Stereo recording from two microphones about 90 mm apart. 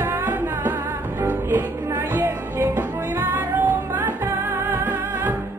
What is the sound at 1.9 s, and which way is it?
Music, 30° right (ahead or behind).